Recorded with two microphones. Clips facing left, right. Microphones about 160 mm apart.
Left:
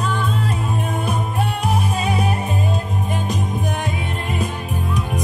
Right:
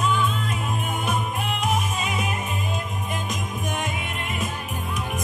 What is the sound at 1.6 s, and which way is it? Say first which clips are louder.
Music: left 2 dB; 35° left (ahead or behind).